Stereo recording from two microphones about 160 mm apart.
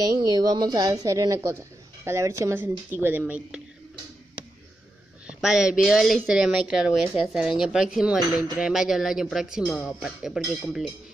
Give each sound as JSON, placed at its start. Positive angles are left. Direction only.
{"t": 0.2, "sound": "a woman's voice", "side_deg": -25}
{"t": 5.2, "sound": "speech", "side_deg": -5}